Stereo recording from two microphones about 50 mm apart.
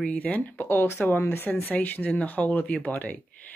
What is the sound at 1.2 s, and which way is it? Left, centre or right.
Speech, left.